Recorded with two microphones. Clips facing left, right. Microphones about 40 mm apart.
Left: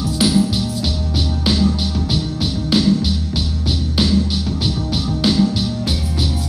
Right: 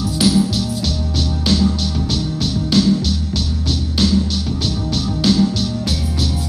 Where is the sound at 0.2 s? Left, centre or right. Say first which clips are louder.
Even; centre.